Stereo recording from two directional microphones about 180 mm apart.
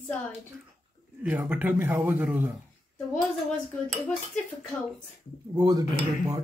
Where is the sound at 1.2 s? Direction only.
10° right (ahead or behind).